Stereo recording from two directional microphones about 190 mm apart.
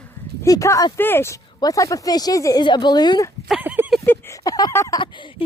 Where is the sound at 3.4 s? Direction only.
5° right (ahead or behind).